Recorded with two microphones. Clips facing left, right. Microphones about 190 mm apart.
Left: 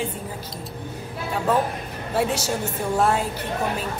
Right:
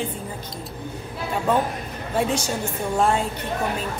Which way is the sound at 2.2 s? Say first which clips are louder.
Even; 5° left (ahead or behind).